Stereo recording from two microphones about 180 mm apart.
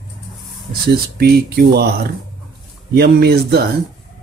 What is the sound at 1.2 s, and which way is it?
Speech, 60° right (ahead or behind).